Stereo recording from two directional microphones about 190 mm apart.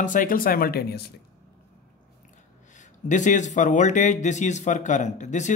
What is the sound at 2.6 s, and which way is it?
Speech, 40° left (ahead or behind).